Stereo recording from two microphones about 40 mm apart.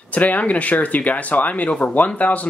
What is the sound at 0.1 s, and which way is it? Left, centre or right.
Speech, left.